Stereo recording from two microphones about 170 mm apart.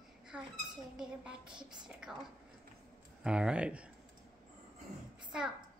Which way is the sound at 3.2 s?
5° right (ahead or behind).